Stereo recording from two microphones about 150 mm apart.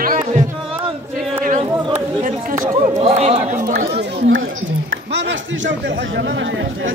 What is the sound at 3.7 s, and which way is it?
Chatter, 90° right.